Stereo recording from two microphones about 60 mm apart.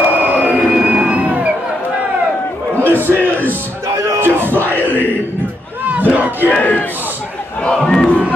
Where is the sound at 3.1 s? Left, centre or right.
Left.